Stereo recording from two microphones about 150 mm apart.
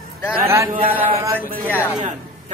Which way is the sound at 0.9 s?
15° right (ahead or behind).